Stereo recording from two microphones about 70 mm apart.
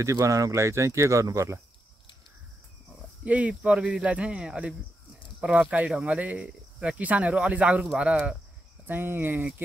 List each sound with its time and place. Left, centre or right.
0.0 s speech: right
3.3 s speech: centre
8.8 s speech: right